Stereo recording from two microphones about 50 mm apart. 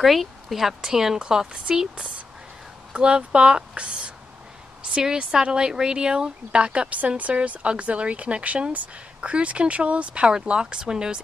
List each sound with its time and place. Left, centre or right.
0.0 s speech: centre